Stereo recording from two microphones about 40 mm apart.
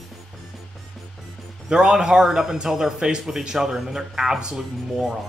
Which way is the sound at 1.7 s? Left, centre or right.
Right.